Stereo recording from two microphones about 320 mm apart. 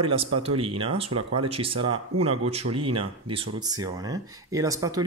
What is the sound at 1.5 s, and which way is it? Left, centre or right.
Speech, centre.